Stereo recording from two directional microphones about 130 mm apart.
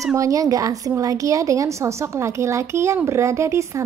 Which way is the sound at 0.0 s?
25° right (ahead or behind).